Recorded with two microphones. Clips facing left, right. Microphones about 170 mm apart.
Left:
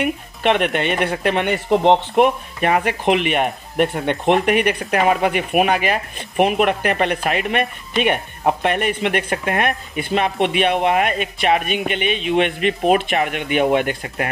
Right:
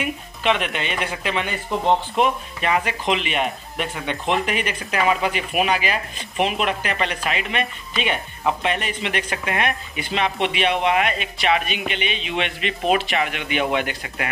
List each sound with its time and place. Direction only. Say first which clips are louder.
0.0 s speech: left 4 dB; 60° left (ahead or behind); by 14.3 s 40° left (ahead or behind)